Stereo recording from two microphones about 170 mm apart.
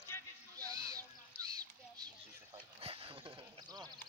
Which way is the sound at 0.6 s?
20° right (ahead or behind).